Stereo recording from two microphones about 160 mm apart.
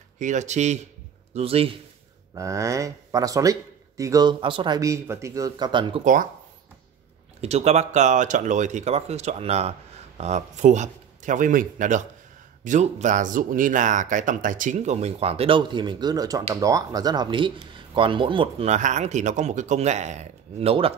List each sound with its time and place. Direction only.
0.2 s a man's voice: 50° right (ahead or behind)
2.3 s speech: 20° right (ahead or behind)
7.4 s speech: 40° right (ahead or behind)